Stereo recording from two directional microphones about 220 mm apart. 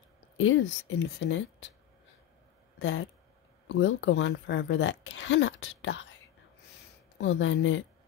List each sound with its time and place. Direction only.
0.4 s speech: 60° left (ahead or behind)
2.8 s speech: 55° left (ahead or behind)
7.2 s speech: 60° left (ahead or behind)